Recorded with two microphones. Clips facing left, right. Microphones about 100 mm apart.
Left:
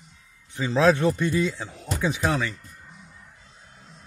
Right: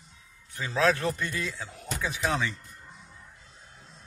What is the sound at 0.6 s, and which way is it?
Speech, 30° left (ahead or behind).